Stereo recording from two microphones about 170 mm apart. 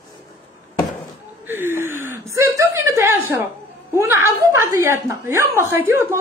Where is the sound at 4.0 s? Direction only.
15° right (ahead or behind).